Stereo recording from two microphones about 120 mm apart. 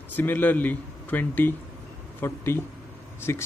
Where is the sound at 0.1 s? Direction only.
15° left (ahead or behind).